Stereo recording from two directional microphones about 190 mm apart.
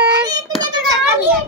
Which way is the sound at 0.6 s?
20° right (ahead or behind).